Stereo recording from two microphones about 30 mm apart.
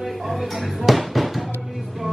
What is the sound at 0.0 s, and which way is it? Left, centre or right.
Speech, centre.